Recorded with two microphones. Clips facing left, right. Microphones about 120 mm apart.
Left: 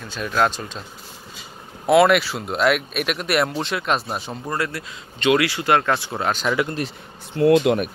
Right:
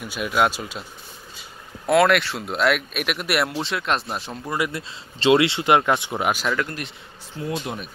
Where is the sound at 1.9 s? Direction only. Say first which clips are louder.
Left 3 dB; centre (ahead or behind).